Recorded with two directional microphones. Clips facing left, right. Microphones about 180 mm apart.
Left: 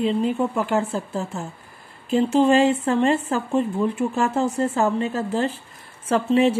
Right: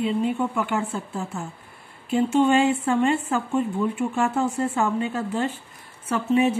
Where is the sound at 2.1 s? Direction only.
35° left (ahead or behind).